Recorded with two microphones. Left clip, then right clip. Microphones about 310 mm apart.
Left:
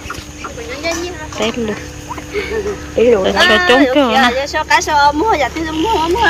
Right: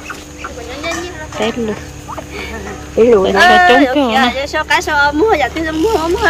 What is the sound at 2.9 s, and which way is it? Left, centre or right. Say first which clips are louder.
Speech: right 2 dB; right.